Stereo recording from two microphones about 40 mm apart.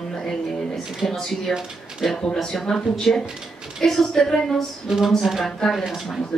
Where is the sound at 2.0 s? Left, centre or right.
Centre.